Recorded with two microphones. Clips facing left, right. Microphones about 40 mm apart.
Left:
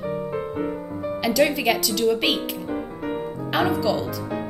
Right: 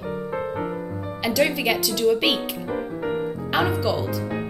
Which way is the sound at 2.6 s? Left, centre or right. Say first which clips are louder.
Right 2 dB; centre.